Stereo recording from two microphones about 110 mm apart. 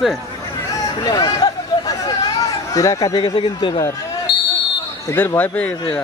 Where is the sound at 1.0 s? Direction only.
35° left (ahead or behind).